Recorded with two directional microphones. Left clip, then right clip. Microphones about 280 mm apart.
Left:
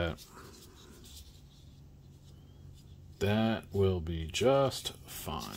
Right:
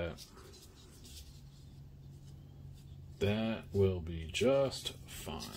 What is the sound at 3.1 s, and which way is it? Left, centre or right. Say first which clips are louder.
Speech: left 4 dB; left.